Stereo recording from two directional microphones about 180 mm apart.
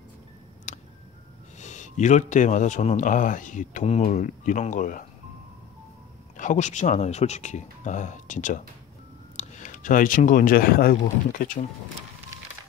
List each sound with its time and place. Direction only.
0.7 s a sound: 40° left (ahead or behind)
1.6 s a man's voice: 40° left (ahead or behind)
6.3 s speech: 45° left (ahead or behind)